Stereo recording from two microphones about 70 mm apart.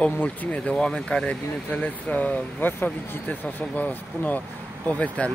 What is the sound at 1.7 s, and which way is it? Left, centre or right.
Speech, left.